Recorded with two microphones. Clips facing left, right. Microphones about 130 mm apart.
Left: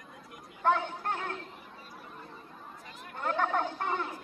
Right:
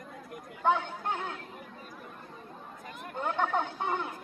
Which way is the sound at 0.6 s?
15° right (ahead or behind).